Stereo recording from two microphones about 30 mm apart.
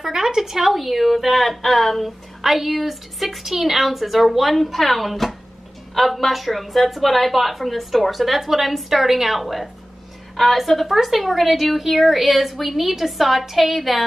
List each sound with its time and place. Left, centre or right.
0.0 s speech: centre
0.7 s a woman's voice: centre
2.4 s a woman's voice: centre